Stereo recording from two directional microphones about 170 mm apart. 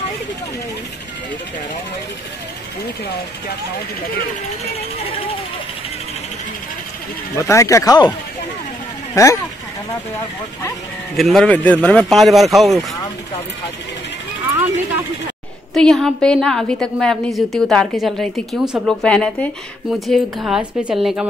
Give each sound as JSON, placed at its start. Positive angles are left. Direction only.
{"t": 4.7, "sound": "speech", "side_deg": 35}
{"t": 7.3, "sound": "speech", "side_deg": 15}
{"t": 9.1, "sound": "speech", "side_deg": 15}
{"t": 11.1, "sound": "a woman's voice", "side_deg": 0}
{"t": 15.7, "sound": "a woman's voice", "side_deg": 5}